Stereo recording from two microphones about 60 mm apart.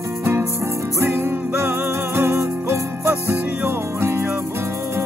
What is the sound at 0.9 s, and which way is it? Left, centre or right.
Music, right.